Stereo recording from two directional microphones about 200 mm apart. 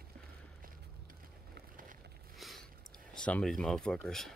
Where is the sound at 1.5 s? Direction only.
45° right (ahead or behind).